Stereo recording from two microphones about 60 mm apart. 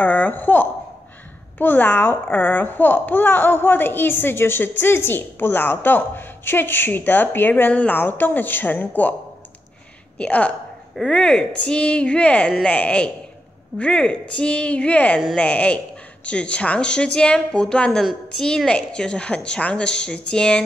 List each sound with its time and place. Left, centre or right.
0.0 s a child's voice: left
10.1 s a woman's voice: left